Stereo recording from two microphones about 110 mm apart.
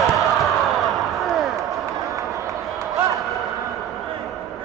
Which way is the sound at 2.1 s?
30° right (ahead or behind).